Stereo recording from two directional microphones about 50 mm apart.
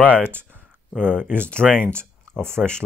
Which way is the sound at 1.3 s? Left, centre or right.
Left.